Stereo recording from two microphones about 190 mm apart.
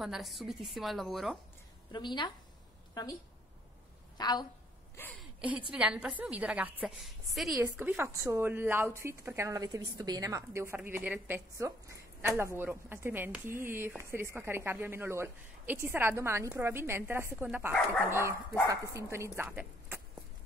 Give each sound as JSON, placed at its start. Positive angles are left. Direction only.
{"t": 0.0, "sound": "a woman's voice", "side_deg": 0}
{"t": 1.9, "sound": "a woman's voice", "side_deg": 25}
{"t": 4.2, "sound": "a woman's voice", "side_deg": 20}
{"t": 5.7, "sound": "a woman's voice", "side_deg": -5}
{"t": 17.7, "sound": "speech", "side_deg": 5}
{"t": 18.7, "sound": "a woman's voice", "side_deg": -15}